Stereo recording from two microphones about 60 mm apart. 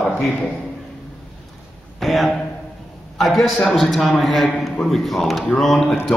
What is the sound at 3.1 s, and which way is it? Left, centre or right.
A man's voice, centre.